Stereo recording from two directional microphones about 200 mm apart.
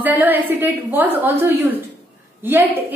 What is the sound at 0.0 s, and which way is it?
A woman's voice, 10° right (ahead or behind).